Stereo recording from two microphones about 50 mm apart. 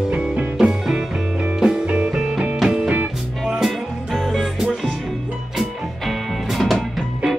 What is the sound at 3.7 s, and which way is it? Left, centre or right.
Music, centre.